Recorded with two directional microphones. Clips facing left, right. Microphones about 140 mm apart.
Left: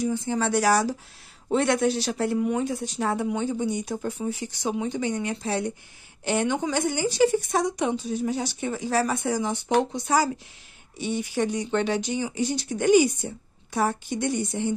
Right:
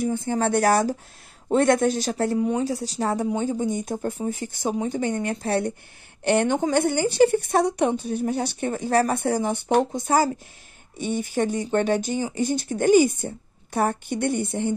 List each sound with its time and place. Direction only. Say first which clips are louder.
0.0 s speech: right 2 dB; 50° right (ahead or behind)
2.3 s a woman's voice: right 2 dB; 30° right (ahead or behind); by 14.7 s 55° right (ahead or behind)